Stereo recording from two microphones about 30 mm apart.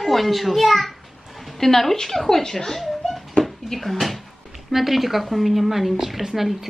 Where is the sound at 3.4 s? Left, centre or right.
Left.